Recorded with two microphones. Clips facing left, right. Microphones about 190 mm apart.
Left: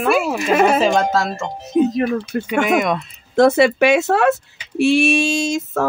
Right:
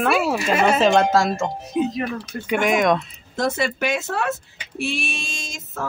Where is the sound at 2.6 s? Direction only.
5° left (ahead or behind).